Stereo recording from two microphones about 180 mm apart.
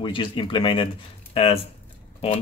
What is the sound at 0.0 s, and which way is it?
Speech, 25° left (ahead or behind).